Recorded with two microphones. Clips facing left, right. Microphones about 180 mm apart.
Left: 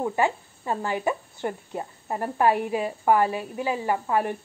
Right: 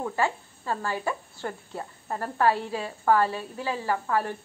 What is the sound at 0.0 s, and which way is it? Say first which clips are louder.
Speech: left 3 dB; 20° left (ahead or behind).